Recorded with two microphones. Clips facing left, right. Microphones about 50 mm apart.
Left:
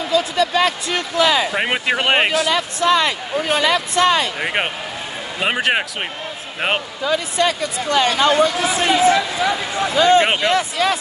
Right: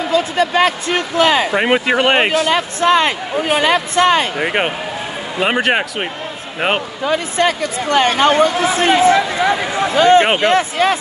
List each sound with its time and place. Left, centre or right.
0.1 s speech: right
1.5 s speech: centre
2.5 s speech: right
4.4 s speech: centre
7.1 s speech: right